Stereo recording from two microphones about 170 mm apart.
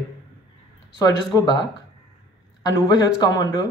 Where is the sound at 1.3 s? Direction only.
25° left (ahead or behind).